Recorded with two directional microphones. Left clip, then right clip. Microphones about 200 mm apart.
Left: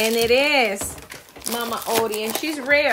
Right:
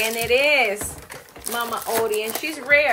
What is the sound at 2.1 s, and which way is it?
Speech, 55° left (ahead or behind).